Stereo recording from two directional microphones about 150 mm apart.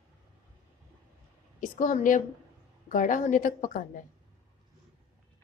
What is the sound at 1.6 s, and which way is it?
A woman's voice, 60° left (ahead or behind).